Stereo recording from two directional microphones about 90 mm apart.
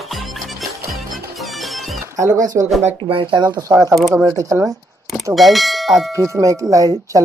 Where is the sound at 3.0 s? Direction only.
70° right (ahead or behind).